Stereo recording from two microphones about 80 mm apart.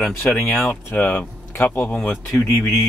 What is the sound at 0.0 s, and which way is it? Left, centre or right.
Speech, left.